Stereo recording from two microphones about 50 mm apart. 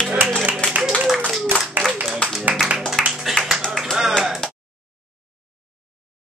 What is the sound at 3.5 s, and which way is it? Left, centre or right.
Music, centre.